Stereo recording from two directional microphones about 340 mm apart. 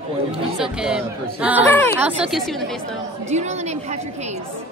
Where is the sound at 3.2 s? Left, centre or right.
Centre.